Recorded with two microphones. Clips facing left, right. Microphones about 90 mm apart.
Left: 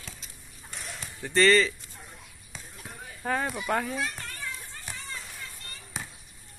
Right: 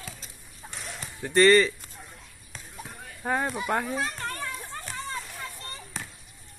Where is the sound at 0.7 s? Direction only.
Centre (ahead or behind).